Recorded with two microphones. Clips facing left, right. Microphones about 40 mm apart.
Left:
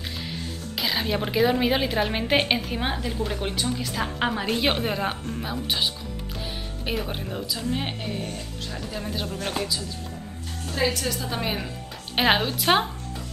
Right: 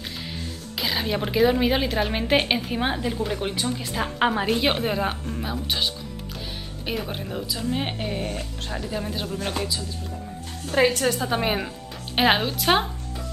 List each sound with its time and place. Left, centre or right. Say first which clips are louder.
0.7 s a woman's voice: even; centre
8.2 s speech: right 3 dB; right
8.9 s a woman's voice: right 1 dB; centre
10.7 s speech: right 5 dB; right
11.2 s a woman's voice: right 4 dB; right
12.2 s a woman's voice: right 1 dB; centre